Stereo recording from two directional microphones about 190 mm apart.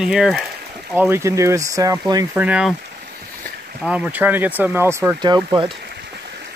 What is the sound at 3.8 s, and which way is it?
Speech, 5° right (ahead or behind).